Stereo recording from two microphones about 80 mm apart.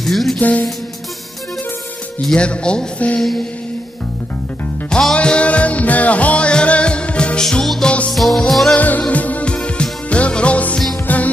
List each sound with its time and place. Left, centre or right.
0.0 s music: centre
0.4 s speech: centre
2.2 s speech: centre
3.2 s music: centre
4.8 s music: centre
8.7 s music: centre